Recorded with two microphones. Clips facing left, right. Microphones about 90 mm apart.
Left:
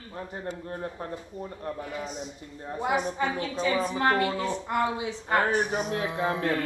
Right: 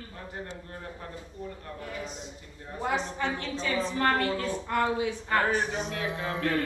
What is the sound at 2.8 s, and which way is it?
A man's voice, 15° left (ahead or behind).